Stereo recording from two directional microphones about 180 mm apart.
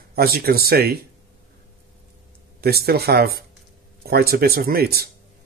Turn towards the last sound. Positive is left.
turn(degrees=-60)  # may be behind; listen again after turning